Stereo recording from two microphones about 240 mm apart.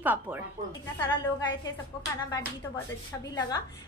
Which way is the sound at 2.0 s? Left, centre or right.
Centre.